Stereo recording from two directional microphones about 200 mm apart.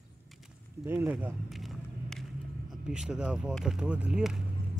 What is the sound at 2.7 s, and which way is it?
Speech, centre (ahead or behind).